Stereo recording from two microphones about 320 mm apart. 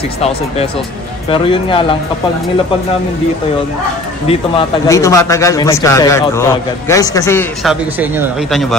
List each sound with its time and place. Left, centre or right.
1.3 s speech: centre
4.3 s speech: centre